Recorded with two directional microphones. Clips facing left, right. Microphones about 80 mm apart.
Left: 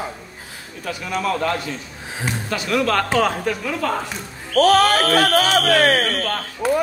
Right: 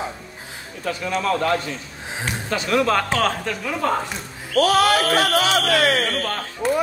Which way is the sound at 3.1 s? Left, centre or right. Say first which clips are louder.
Left 3 dB; centre.